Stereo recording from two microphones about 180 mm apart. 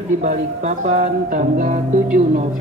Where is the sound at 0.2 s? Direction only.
40° right (ahead or behind).